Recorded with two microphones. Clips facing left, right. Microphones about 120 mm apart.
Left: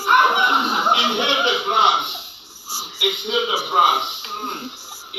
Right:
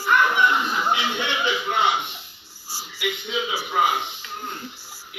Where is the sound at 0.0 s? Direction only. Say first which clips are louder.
Left 3 dB; 25° left (ahead or behind).